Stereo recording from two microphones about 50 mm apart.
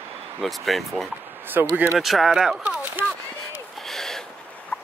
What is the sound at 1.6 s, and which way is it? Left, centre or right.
Speech, right.